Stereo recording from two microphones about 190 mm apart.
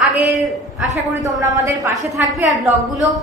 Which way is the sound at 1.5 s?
15° right (ahead or behind).